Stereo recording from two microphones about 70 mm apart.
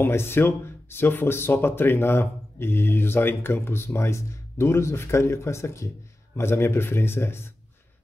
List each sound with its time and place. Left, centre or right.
0.0 s speech: left